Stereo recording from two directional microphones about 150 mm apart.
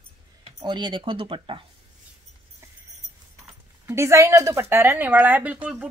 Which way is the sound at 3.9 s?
20° right (ahead or behind).